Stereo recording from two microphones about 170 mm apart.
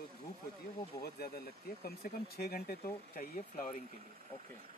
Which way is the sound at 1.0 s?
65° left (ahead or behind).